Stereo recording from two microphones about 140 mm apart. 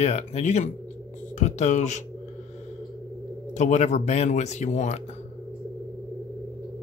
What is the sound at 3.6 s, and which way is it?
Speech, 55° left (ahead or behind).